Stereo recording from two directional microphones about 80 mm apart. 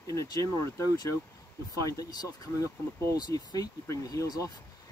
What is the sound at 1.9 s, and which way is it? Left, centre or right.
Speech, left.